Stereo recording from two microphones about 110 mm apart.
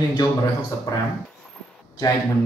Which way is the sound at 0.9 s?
35° left (ahead or behind).